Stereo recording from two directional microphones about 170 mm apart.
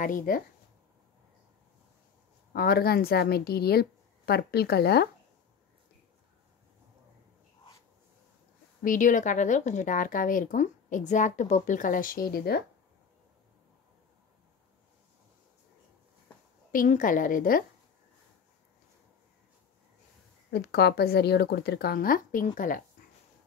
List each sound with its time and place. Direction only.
0.0 s a woman's voice: 55° left (ahead or behind)
2.5 s a woman's voice: 65° left (ahead or behind)
8.8 s a woman's voice: 50° left (ahead or behind)
16.7 s a woman's voice: 50° left (ahead or behind)
20.5 s speech: 70° left (ahead or behind); by 22.8 s 50° left (ahead or behind)